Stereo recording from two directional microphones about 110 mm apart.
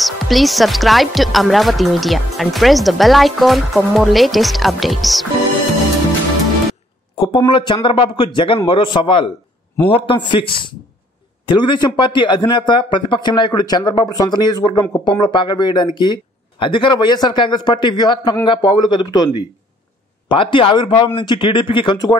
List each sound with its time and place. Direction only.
0.0 s speech: centre (ahead or behind)
7.2 s speech: 50° left (ahead or behind)